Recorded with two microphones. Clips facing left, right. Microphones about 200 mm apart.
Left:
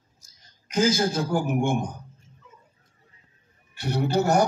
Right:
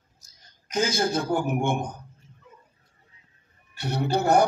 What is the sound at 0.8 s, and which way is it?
Speech, 60° right (ahead or behind).